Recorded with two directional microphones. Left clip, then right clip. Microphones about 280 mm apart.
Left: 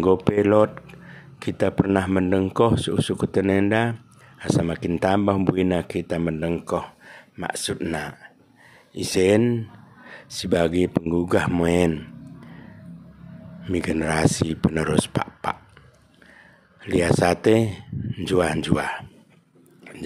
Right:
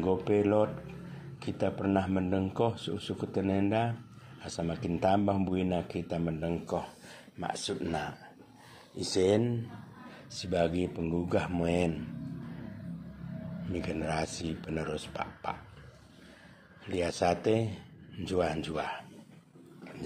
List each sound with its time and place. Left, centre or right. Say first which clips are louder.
0.0 s speech: left 9 dB; left
13.7 s speech: left 11 dB; left
16.8 s speech: left 10 dB; left